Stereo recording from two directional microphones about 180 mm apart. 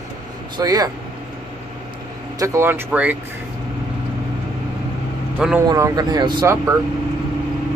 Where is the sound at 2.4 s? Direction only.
15° right (ahead or behind).